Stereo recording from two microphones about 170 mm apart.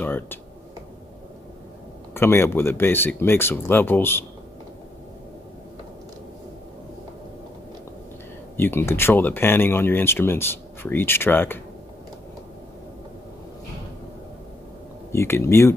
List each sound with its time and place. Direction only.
0.0 s speech: 10° left (ahead or behind)
2.1 s speech: 15° left (ahead or behind)
8.5 s speech: 15° left (ahead or behind)
15.0 s speech: 15° left (ahead or behind)